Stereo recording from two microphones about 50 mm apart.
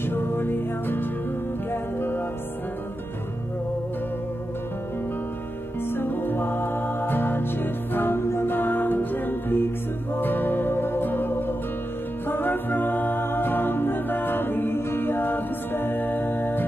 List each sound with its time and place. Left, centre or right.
0.0 s music: left
5.9 s music: left
8.5 s music: left